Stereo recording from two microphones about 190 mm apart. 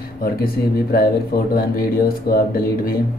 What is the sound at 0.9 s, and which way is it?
A man's voice, 50° left (ahead or behind).